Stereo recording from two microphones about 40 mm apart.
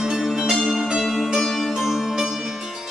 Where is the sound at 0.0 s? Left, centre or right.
Centre.